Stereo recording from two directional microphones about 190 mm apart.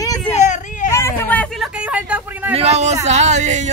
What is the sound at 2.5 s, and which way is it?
Speech, 35° right (ahead or behind).